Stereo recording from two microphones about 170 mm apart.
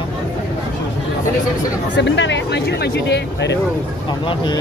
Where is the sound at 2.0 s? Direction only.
90° left.